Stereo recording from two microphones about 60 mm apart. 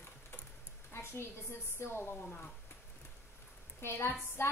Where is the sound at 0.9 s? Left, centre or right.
Left.